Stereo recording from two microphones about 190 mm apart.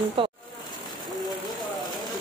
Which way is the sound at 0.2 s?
25° right (ahead or behind).